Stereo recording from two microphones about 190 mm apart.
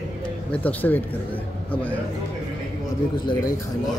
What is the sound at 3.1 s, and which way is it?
Speech, 20° left (ahead or behind).